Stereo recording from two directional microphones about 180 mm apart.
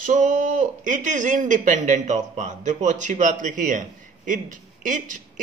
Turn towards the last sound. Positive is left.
turn(degrees=-45)  # may be behind; listen again after turning